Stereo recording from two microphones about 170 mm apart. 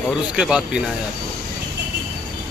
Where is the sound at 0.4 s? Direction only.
5° right (ahead or behind).